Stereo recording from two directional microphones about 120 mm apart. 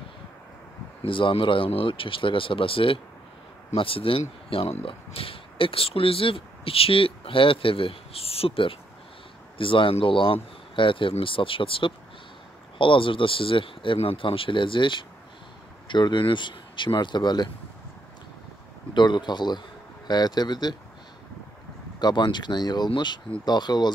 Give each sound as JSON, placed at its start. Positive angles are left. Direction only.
{"t": 1.0, "sound": "speech", "side_deg": 45}
{"t": 18.9, "sound": "speech", "side_deg": 35}
{"t": 22.0, "sound": "speech", "side_deg": 40}